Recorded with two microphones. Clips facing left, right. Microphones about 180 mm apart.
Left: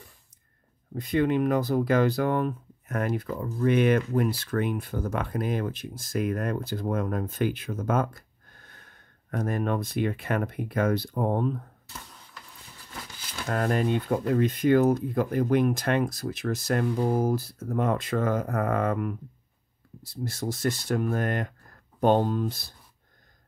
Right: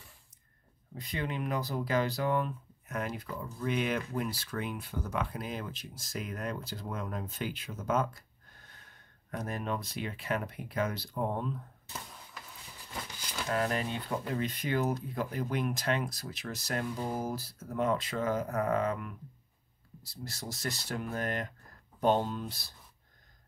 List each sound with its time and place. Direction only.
0.9 s speech: 50° left (ahead or behind)
9.3 s speech: 50° left (ahead or behind)
13.5 s speech: 50° left (ahead or behind)